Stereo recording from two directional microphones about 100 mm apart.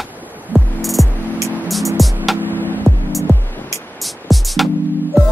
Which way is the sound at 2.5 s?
20° left (ahead or behind).